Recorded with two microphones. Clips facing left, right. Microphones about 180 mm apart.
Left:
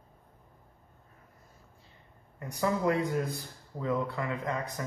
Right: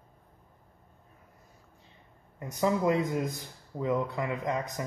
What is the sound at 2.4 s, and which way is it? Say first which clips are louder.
Speech: right 2 dB; 20° right (ahead or behind).